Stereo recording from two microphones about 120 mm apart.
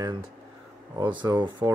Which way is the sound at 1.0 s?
40° right (ahead or behind).